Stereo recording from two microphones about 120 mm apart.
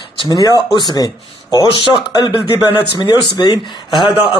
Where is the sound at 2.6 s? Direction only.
45° left (ahead or behind).